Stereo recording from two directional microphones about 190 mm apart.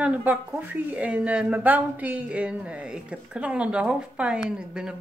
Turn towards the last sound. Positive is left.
turn(degrees=-5)  # may be behind; listen again after turning